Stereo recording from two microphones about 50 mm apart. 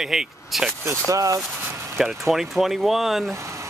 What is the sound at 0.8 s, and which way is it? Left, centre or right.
Speech, right.